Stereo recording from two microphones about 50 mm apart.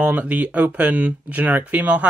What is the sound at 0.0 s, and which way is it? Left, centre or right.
Speech, right.